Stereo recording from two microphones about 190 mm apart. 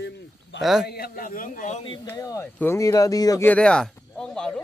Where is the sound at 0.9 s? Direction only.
50° left (ahead or behind).